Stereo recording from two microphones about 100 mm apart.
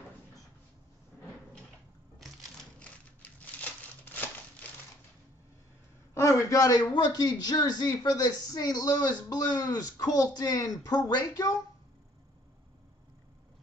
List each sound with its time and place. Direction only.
2.8 s crumpling: 15° left (ahead or behind)
6.1 s a man's voice: 30° left (ahead or behind)